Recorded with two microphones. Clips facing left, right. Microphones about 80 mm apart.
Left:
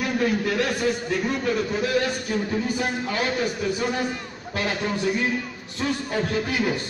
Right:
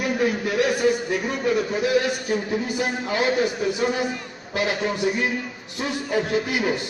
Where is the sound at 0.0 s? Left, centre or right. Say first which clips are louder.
Right 1 dB; centre.